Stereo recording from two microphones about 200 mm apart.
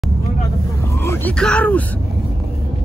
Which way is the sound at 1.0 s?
10° left (ahead or behind).